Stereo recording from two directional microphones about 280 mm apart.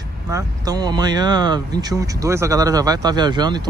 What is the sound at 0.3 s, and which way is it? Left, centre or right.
Speech, centre.